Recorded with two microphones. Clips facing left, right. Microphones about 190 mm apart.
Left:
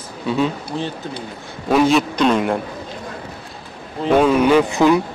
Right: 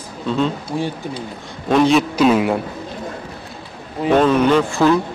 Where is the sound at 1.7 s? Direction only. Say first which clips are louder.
Right 1 dB; centre (ahead or behind).